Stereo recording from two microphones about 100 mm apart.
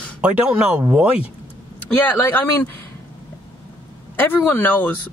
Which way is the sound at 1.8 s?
15° left (ahead or behind).